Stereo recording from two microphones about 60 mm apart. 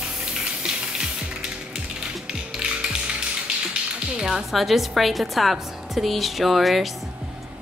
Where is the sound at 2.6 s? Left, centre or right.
Centre.